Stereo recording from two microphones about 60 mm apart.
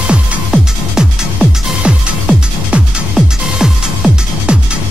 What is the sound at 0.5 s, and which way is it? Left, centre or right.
Music, centre.